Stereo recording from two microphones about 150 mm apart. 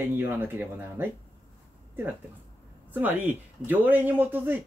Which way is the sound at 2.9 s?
10° right (ahead or behind).